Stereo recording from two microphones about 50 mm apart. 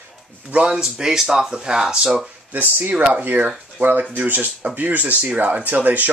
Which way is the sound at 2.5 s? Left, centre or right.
Right.